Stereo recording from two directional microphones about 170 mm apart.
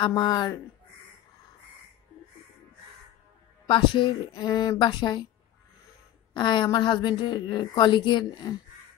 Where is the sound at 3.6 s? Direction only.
30° left (ahead or behind).